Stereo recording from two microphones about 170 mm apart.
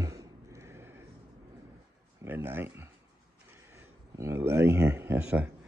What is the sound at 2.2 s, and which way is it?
Speech, 10° right (ahead or behind).